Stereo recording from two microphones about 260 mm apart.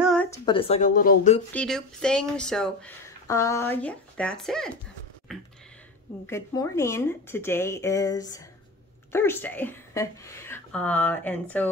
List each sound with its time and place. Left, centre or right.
0.0 s a sound: centre
0.5 s speech: left
1.5 s a woman's voice: centre